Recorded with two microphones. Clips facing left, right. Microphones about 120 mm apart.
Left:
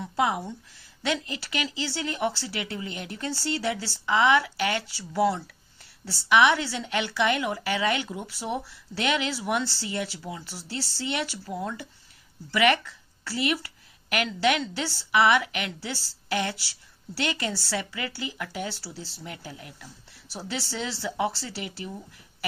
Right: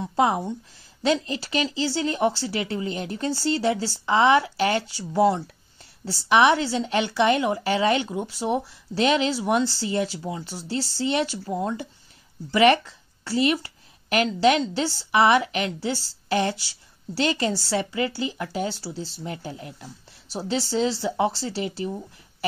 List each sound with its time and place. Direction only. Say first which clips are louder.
0.0 s a woman's voice: right 4 dB; 30° right (ahead or behind)